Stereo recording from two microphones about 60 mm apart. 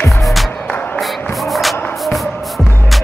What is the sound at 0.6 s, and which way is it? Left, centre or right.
Music, left.